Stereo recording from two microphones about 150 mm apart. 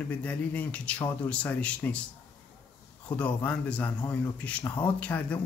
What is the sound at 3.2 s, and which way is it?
Speech, 10° left (ahead or behind).